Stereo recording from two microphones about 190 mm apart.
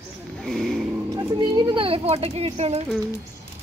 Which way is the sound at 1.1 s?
20° right (ahead or behind).